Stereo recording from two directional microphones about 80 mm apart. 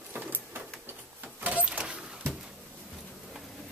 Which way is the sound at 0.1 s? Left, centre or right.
Right.